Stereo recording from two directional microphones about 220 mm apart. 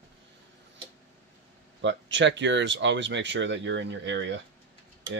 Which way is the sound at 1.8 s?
55° right (ahead or behind).